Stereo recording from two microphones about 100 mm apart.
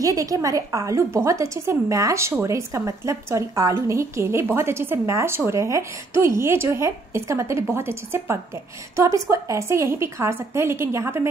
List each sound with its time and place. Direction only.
0.0 s a woman's voice: 35° right (ahead or behind)